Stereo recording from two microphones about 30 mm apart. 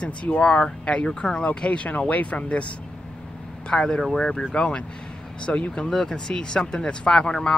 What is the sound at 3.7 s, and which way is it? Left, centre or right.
Speech, left.